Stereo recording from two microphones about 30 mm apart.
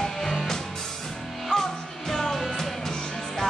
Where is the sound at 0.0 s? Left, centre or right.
Centre.